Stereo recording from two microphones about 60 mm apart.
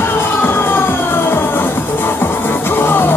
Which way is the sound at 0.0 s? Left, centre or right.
Left.